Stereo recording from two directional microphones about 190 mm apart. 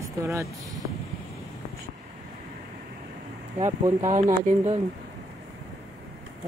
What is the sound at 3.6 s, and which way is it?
Mantra, 15° right (ahead or behind).